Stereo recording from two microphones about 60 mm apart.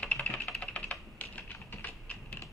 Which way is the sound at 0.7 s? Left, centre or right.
Left.